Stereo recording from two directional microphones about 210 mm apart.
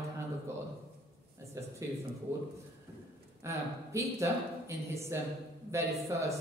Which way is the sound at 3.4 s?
15° right (ahead or behind).